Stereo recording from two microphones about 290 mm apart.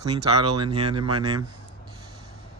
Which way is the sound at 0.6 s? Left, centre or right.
Centre.